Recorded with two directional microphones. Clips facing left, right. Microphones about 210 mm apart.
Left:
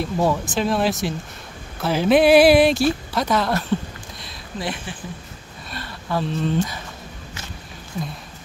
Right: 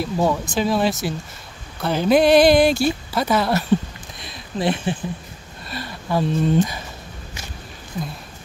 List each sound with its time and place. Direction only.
0.0 s speech: centre (ahead or behind)
4.2 s a sound: 25° right (ahead or behind)
5.7 s speech: 10° right (ahead or behind)